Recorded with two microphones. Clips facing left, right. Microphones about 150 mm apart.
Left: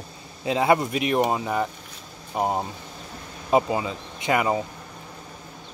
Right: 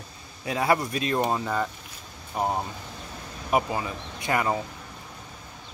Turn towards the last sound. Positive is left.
turn(degrees=15)  # may be behind; listen again after turning